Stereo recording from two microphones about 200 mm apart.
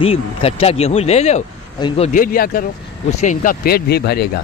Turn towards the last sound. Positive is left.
turn(degrees=55)  # may be behind; listen again after turning